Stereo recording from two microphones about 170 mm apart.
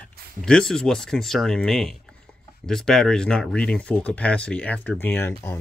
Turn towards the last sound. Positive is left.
turn(degrees=10)  # may be behind; listen again after turning